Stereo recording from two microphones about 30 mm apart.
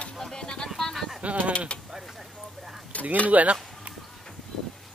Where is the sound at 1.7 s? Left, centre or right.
Left.